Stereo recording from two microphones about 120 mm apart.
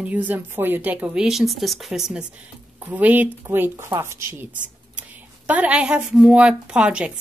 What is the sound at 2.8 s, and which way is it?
A woman's voice, 15° right (ahead or behind).